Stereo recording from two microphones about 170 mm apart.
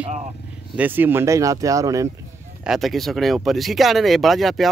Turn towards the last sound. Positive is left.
turn(degrees=0)  # may be behind; listen again after turning